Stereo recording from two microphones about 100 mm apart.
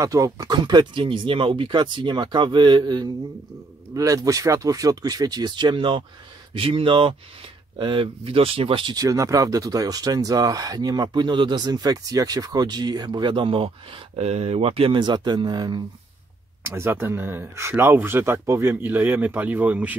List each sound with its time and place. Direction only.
0.0 s speech: 35° right (ahead or behind)
3.9 s speech: 35° right (ahead or behind); by 8.9 s 65° right (ahead or behind)
8.9 s speech: 35° right (ahead or behind); by 15.0 s 70° right (ahead or behind)
15.0 s speech: 45° right (ahead or behind)
16.6 s speech: 25° right (ahead or behind)